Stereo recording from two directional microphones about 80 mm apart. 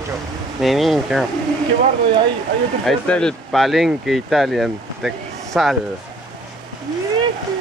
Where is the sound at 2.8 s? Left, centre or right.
Centre.